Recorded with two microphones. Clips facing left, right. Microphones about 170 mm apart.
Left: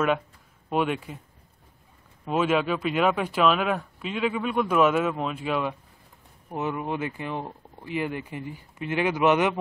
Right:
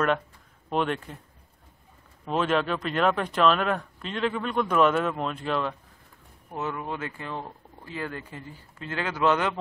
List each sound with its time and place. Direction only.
0.7 s speech: 5° left (ahead or behind)
2.2 s speech: 5° left (ahead or behind)